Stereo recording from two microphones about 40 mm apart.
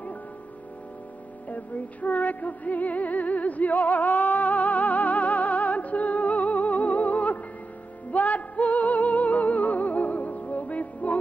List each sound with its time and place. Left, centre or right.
1.5 s music: left